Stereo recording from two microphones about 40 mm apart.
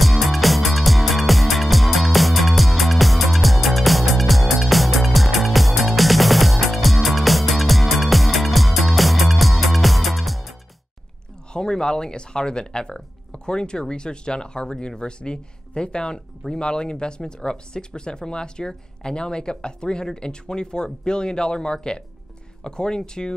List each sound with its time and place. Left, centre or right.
0.0 s music: centre
11.5 s speech: centre